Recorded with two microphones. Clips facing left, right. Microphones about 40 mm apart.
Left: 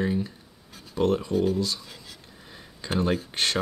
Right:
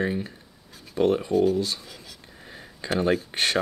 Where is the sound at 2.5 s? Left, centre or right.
Right.